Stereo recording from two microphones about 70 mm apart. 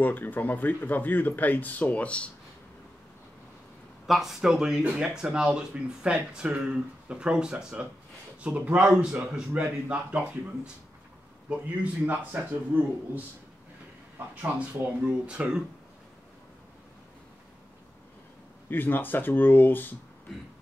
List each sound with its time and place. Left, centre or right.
0.0 s speech: left
4.1 s speech: centre; by 12.4 s right
14.3 s speech: centre
18.7 s speech: left